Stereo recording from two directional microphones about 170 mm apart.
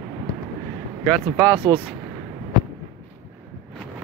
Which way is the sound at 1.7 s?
25° right (ahead or behind).